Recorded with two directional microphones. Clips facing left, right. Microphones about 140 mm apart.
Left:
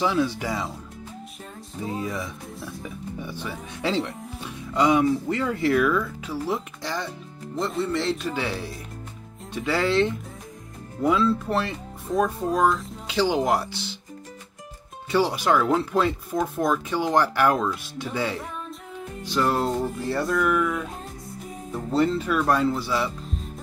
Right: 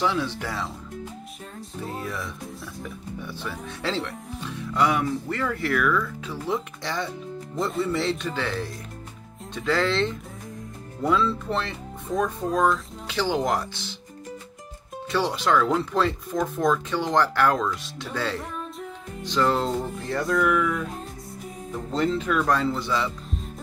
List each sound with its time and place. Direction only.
0.0 s speech: 10° left (ahead or behind)
3.2 s speech: 15° left (ahead or behind)
6.2 s speech: 5° left (ahead or behind)
13.0 s speech: 15° left (ahead or behind)
15.0 s speech: 10° left (ahead or behind)
21.9 s speech: 5° left (ahead or behind)